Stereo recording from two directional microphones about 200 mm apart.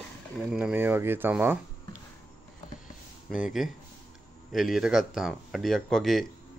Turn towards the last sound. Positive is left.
turn(degrees=0)  # may be behind; listen again after turning